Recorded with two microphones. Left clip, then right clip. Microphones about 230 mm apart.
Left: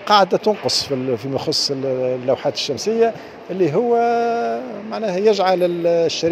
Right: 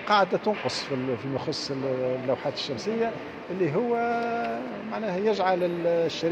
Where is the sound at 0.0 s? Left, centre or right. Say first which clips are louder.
Left 8 dB; left.